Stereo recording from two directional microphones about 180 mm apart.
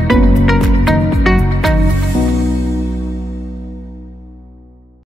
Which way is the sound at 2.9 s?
15° left (ahead or behind).